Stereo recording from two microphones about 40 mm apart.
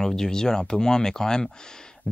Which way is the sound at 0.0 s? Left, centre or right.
Centre.